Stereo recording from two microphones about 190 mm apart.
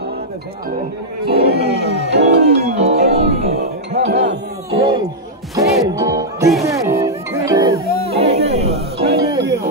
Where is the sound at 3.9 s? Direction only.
35° right (ahead or behind).